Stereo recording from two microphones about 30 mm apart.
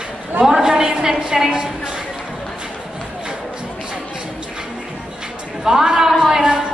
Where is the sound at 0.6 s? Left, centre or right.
Right.